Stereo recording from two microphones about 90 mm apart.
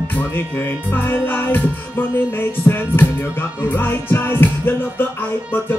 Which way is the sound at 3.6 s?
25° left (ahead or behind).